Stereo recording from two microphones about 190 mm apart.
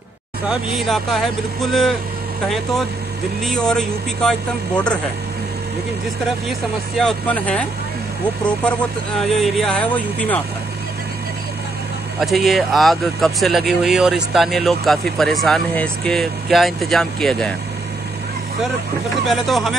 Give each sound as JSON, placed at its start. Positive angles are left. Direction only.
{"t": 0.5, "sound": "speech", "side_deg": 0}
{"t": 3.4, "sound": "speech", "side_deg": 5}
{"t": 7.0, "sound": "speech", "side_deg": 5}
{"t": 12.2, "sound": "speech", "side_deg": 0}
{"t": 19.2, "sound": "speech", "side_deg": 0}